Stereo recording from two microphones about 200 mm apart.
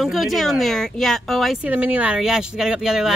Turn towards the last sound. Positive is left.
turn(degrees=-5)  # may be behind; listen again after turning